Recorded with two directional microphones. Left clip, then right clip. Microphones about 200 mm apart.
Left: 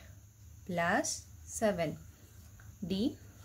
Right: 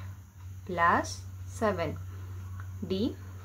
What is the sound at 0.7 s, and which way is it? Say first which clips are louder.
Speech: right 6 dB; 25° left (ahead or behind).